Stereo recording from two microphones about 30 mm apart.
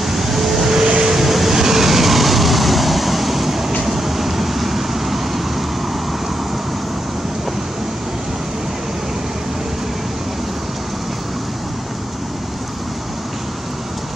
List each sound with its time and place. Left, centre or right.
0.0 s vehicle: centre
0.7 s vehicle: right
1.1 s vehicle: centre